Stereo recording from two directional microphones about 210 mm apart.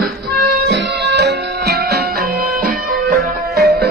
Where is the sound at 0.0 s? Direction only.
50° right (ahead or behind).